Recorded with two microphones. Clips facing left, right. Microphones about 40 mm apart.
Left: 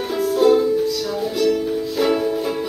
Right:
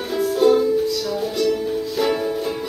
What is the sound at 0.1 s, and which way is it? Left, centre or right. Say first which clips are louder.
Ukulele: left 1 dB; centre.